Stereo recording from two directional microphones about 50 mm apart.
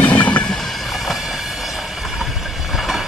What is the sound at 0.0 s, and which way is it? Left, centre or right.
Train, left.